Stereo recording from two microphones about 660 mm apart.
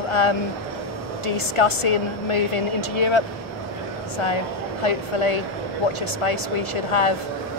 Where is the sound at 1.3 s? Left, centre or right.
Left.